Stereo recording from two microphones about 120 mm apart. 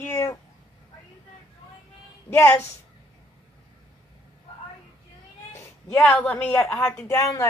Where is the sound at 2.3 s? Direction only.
20° left (ahead or behind).